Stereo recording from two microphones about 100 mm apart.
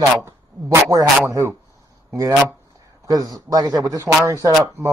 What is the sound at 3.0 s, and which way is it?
A man's voice, 40° right (ahead or behind).